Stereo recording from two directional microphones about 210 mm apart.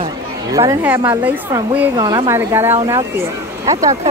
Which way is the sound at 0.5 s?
10° right (ahead or behind).